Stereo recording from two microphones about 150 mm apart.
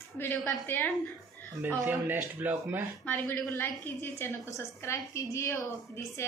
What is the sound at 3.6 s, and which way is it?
A woman's voice, 15° left (ahead or behind).